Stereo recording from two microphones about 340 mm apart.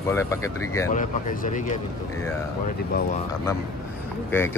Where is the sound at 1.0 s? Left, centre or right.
Left.